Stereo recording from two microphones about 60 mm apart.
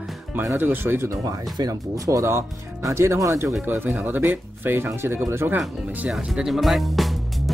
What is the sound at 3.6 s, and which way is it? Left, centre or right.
Speech, right.